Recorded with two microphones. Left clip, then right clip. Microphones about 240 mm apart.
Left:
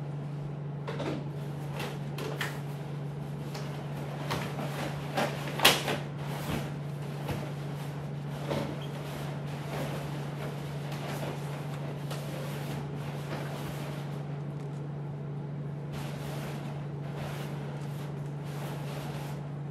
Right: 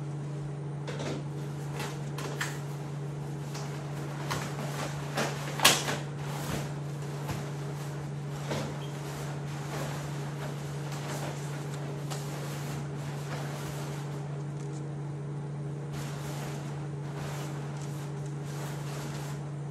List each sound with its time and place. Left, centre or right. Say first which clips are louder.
5.6 s creak: even; centre